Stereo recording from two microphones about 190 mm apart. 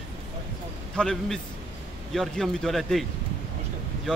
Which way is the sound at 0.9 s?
Centre (ahead or behind).